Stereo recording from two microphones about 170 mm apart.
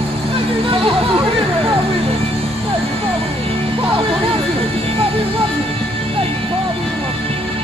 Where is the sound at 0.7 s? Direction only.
30° right (ahead or behind).